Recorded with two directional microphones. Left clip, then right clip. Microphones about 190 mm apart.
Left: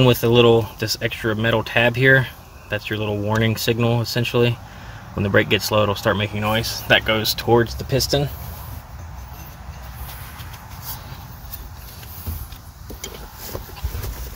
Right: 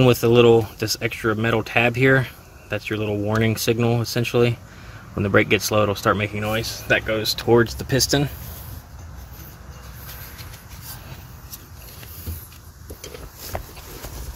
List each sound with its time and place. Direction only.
0.0 s speech: 15° right (ahead or behind)
6.4 s speech: 10° left (ahead or behind)
7.6 s speech: 25° right (ahead or behind)